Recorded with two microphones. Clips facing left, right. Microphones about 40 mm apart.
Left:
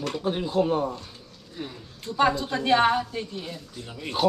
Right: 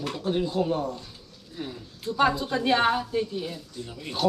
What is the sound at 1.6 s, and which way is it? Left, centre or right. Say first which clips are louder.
Speech: right 1 dB; centre.